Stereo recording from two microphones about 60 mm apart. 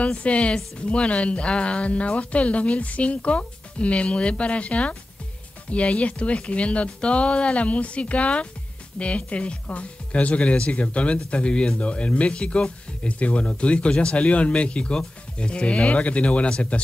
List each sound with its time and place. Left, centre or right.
0.0 s speech: left